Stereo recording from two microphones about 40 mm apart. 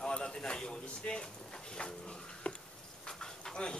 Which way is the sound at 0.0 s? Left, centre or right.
Left.